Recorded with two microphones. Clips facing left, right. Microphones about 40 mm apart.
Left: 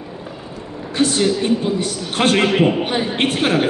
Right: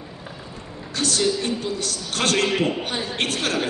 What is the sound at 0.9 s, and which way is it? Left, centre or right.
A man's voice, left.